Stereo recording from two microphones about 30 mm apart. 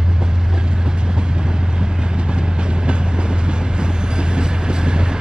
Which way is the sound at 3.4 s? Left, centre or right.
Right.